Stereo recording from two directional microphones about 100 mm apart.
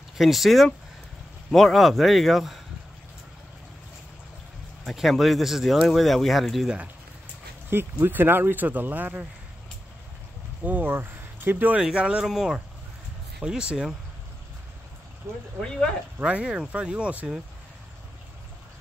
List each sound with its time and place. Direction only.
0.2 s speech: centre (ahead or behind)
4.8 s speech: centre (ahead or behind)
8.0 s speech: 20° right (ahead or behind)
10.6 s speech: 15° right (ahead or behind)
11.8 s speech: 10° right (ahead or behind)
15.3 s speech: 20° right (ahead or behind)
15.6 s speech: 5° left (ahead or behind)
16.2 s speech: 10° right (ahead or behind)